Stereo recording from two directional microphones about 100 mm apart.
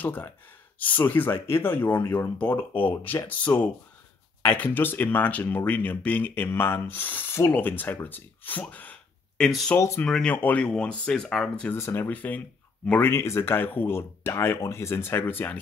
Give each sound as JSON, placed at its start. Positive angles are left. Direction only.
{"t": 0.0, "sound": "speech", "side_deg": 20}
{"t": 9.8, "sound": "speech", "side_deg": 30}
{"t": 10.0, "sound": "speech", "side_deg": 10}
{"t": 10.3, "sound": "speech", "side_deg": 20}
{"t": 11.7, "sound": "speech", "side_deg": 25}